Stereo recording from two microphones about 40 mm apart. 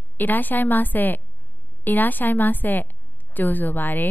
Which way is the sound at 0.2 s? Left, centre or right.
Left.